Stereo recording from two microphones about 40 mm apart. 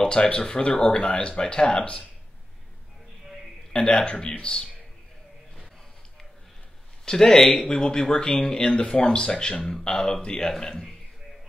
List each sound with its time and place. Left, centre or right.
0.1 s speech: left
3.7 s speech: left
7.1 s speech: centre